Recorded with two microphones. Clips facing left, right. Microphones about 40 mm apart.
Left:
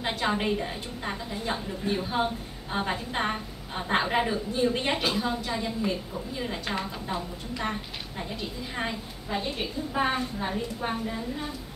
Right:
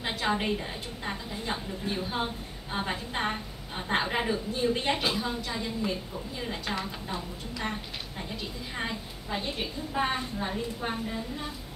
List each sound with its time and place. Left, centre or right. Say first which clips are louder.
0.0 s a woman's voice: left 2 dB; centre